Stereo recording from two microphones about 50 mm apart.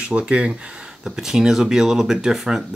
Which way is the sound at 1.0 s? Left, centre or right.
Centre.